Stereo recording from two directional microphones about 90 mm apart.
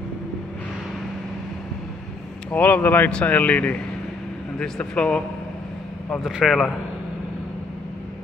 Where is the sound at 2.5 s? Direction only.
20° left (ahead or behind).